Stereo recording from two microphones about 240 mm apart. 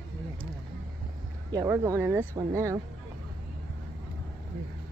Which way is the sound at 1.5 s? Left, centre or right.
Centre.